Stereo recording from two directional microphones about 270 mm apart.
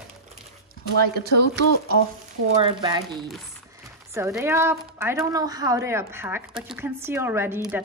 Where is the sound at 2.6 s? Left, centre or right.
Centre.